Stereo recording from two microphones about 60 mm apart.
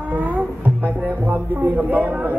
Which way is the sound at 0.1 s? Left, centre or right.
Right.